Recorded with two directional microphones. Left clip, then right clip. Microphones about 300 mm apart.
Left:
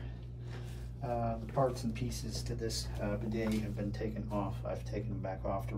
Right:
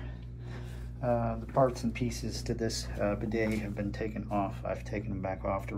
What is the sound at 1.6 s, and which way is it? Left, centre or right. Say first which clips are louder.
Speech: right 5 dB; centre.